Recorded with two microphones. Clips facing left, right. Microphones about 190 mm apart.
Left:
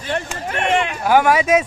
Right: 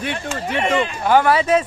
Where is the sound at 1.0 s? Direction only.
10° left (ahead or behind).